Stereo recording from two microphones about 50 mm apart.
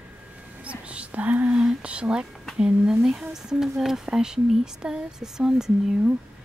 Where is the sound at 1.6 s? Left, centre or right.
Centre.